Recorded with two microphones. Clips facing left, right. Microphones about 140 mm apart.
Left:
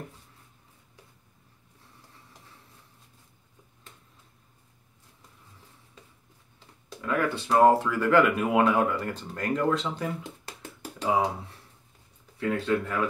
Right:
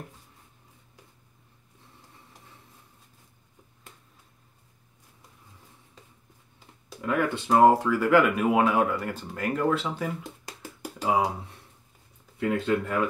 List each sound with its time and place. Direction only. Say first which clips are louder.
7.0 s speech: right 1 dB; 20° right (ahead or behind)
8.0 s speech: even; 10° right (ahead or behind)
10.6 s a sound: right 1 dB; 10° right (ahead or behind)
12.4 s speech: right 1 dB; 20° right (ahead or behind)